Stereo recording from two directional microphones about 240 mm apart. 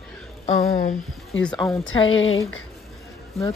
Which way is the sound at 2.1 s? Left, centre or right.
Left.